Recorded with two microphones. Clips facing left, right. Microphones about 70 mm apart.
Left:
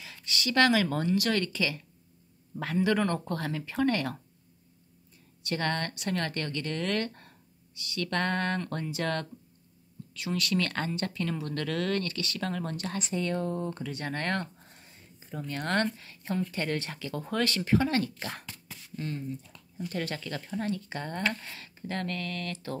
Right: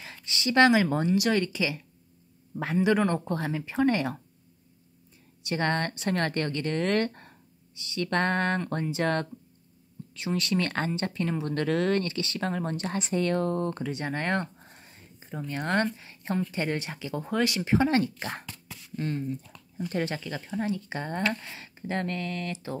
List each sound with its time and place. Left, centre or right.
0.0 s speech: right
5.4 s speech: right
13.1 s speech: right
13.8 s a sound: centre; by 15.2 s right
15.3 s speech: centre
18.9 s speech: right
19.8 s speech: right